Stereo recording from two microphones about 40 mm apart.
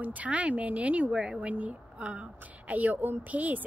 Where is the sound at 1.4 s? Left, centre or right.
Right.